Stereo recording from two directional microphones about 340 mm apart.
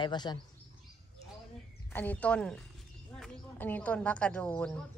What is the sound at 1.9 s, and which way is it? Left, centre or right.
Speech, centre.